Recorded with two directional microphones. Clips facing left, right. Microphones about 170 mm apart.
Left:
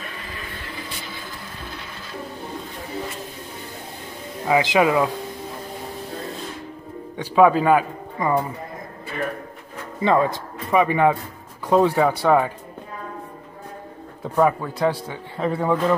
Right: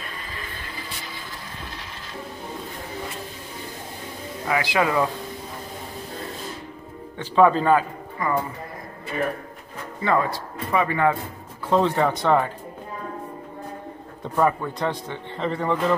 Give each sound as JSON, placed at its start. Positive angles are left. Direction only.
{"t": 4.5, "sound": "a man's voice", "side_deg": 20}
{"t": 7.2, "sound": "a man's voice", "side_deg": 10}
{"t": 8.2, "sound": "speech", "side_deg": 20}
{"t": 10.0, "sound": "a man's voice", "side_deg": 20}
{"t": 14.3, "sound": "a man's voice", "side_deg": 5}